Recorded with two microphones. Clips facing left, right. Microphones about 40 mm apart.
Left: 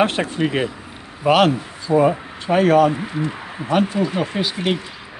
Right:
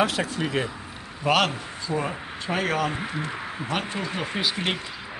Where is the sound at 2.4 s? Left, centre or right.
Centre.